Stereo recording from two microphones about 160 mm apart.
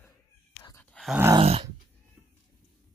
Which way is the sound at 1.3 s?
40° right (ahead or behind).